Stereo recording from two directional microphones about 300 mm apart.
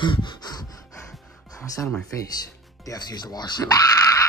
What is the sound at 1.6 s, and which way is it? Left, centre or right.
Speech, centre.